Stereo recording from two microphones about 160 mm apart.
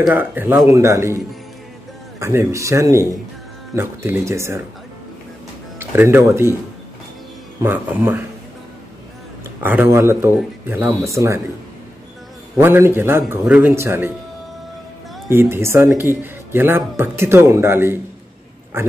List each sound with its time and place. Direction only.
0.1 s speech: 10° right (ahead or behind)
2.1 s speech: 15° right (ahead or behind)
5.8 s speech: 15° right (ahead or behind)
7.6 s speech: 10° right (ahead or behind)
9.6 s speech: 10° right (ahead or behind)
12.5 s speech: 15° right (ahead or behind)
15.2 s speech: 15° right (ahead or behind)